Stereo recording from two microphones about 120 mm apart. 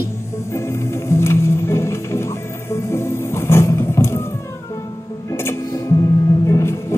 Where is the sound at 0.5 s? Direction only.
20° left (ahead or behind).